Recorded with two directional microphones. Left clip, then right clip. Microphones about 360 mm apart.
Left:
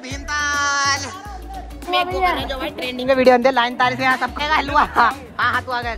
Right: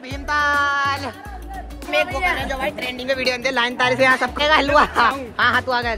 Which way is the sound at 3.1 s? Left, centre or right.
Centre.